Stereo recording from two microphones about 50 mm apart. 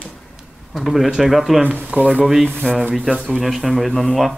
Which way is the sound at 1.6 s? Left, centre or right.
Right.